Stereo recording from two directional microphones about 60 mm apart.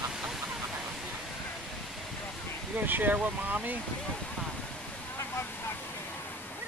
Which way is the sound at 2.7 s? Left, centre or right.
Right.